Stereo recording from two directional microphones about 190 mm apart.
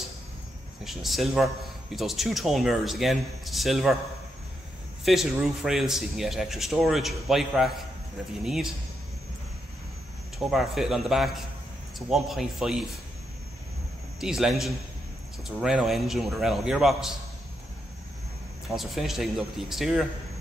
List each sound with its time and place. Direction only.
0.8 s a man's voice: centre (ahead or behind)
5.0 s a man's voice: centre (ahead or behind)
10.4 s a man's voice: centre (ahead or behind)
14.2 s a man's voice: centre (ahead or behind)
18.7 s a man's voice: centre (ahead or behind)